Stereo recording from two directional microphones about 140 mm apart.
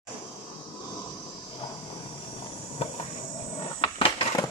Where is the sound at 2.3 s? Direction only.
40° left (ahead or behind).